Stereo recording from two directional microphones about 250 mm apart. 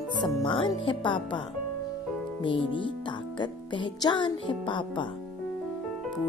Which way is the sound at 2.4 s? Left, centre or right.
Centre.